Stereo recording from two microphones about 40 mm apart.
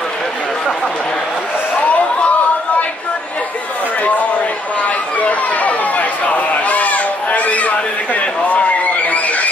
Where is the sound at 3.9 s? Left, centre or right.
Left.